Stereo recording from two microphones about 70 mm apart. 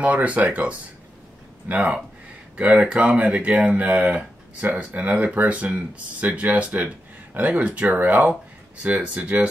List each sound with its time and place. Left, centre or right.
0.0 s speech: centre